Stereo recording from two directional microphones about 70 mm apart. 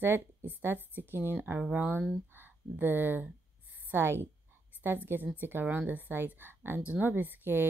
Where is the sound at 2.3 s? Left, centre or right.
Right.